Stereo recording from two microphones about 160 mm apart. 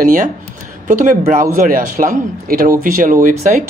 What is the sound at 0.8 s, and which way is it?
Speech, 55° right (ahead or behind).